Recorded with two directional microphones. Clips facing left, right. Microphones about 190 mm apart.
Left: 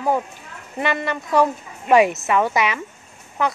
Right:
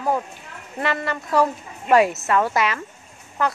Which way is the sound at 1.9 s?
10° left (ahead or behind).